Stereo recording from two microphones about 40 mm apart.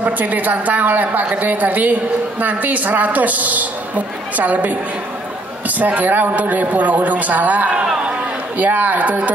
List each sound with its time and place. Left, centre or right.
0.0 s a woman's voice: right
5.8 s a man's voice: right
7.8 s run: centre
8.5 s a woman's voice: right